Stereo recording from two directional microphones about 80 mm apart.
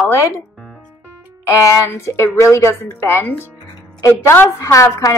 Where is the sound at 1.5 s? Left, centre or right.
Left.